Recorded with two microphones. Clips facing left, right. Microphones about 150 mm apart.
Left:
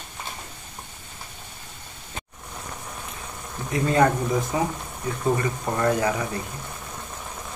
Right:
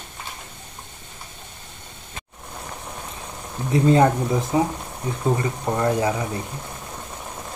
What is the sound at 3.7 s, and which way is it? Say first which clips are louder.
Speech: right 4 dB; 25° right (ahead or behind).